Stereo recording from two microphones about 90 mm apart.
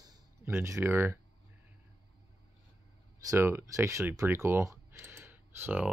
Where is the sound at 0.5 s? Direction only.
30° right (ahead or behind).